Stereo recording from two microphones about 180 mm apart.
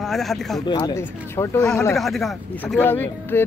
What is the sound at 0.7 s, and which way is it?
Speech, 20° left (ahead or behind).